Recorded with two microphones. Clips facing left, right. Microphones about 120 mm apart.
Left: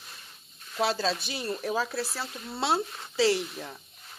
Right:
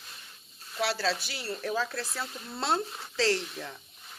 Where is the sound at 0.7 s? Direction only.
20° left (ahead or behind).